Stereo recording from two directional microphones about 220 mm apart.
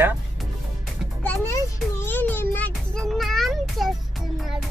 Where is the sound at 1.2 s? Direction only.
10° left (ahead or behind).